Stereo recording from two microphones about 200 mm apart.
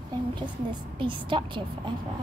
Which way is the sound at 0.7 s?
25° right (ahead or behind).